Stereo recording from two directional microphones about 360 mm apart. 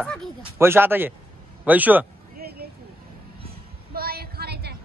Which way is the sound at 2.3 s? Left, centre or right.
Right.